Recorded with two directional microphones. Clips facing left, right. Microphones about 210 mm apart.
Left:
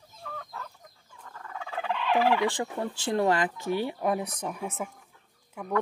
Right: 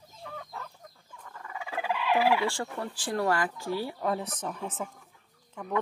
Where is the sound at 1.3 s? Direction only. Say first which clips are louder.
Even; 5° right (ahead or behind).